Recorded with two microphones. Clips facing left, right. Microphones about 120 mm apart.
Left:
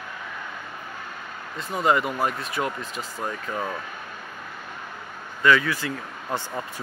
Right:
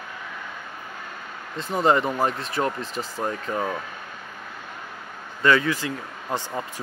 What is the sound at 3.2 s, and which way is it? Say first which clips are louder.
Speech: right 3 dB; 15° right (ahead or behind).